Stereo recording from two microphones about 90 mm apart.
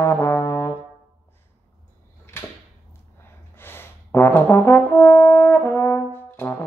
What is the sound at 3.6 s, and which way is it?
Brass instrument, 25° left (ahead or behind).